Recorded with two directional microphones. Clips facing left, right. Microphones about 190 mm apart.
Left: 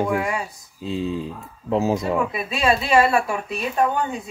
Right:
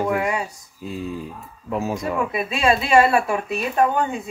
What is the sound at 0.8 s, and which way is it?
Speech, 25° left (ahead or behind).